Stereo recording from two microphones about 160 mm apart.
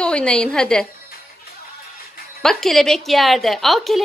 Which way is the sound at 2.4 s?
Centre (ahead or behind).